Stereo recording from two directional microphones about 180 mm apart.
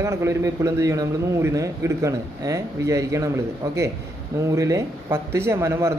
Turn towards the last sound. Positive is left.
turn(degrees=-15)  # may be behind; listen again after turning